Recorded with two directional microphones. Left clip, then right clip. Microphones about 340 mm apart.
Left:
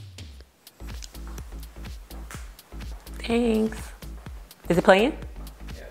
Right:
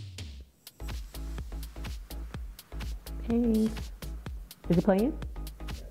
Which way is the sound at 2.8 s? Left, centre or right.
Centre.